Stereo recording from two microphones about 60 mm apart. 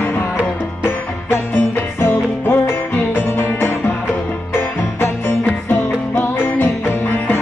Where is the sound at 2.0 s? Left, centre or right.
Left.